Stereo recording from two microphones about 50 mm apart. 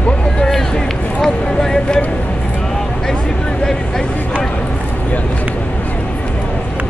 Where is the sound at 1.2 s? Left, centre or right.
Centre.